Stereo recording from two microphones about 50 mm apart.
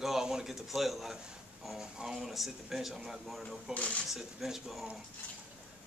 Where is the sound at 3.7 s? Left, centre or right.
Left.